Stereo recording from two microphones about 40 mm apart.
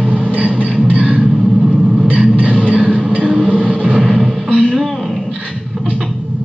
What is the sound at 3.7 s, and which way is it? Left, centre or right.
Vehicle, right.